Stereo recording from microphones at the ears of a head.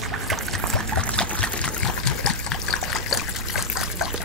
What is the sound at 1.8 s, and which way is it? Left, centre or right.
Trickle, left.